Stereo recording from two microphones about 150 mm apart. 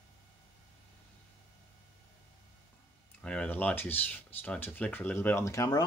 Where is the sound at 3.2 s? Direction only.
5° left (ahead or behind); by 5.9 s 25° left (ahead or behind).